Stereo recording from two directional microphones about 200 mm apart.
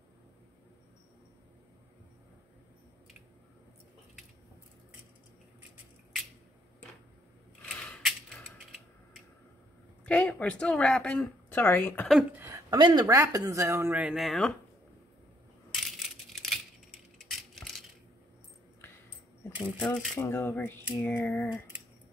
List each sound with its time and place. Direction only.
7.6 s mechanisms: 5° left (ahead or behind)
10.0 s speech: 5° left (ahead or behind)
12.2 s a sound: 10° right (ahead or behind)
13.0 s speech: 15° right (ahead or behind); by 14.5 s centre (ahead or behind)
15.7 s coin: centre (ahead or behind)
17.2 s a sound: centre (ahead or behind)
19.8 s speech: 5° left (ahead or behind)